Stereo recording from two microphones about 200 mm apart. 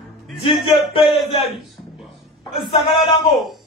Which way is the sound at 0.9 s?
25° left (ahead or behind).